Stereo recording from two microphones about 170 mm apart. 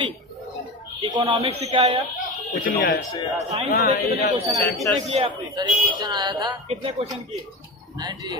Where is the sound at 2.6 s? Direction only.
60° left (ahead or behind).